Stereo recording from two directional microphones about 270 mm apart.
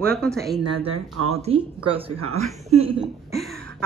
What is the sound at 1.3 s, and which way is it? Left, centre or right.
Speech, right.